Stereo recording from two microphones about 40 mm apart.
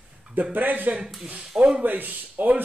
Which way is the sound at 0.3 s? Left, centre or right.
Right.